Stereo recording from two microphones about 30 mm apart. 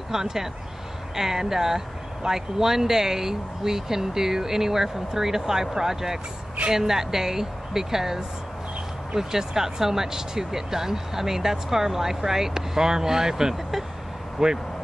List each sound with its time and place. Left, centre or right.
0.1 s speech: centre